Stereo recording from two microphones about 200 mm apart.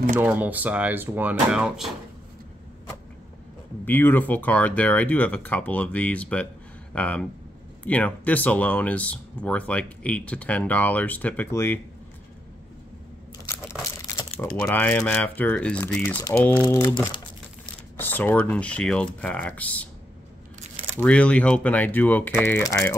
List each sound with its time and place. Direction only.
0.1 s speech: 10° right (ahead or behind)
3.8 s speech: 10° left (ahead or behind)
14.6 s speech: 10° left (ahead or behind)
21.0 s speech: 5° left (ahead or behind)